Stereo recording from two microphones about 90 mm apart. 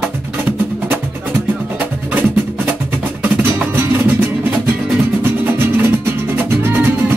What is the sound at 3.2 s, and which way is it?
Music, 20° right (ahead or behind).